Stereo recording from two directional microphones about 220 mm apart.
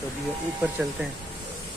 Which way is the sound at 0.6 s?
5° right (ahead or behind).